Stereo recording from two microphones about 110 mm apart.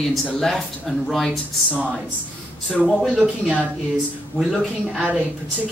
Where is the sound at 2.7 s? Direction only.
Centre (ahead or behind).